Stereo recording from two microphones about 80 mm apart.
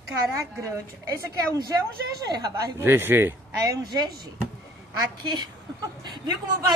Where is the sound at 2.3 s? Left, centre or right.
Right.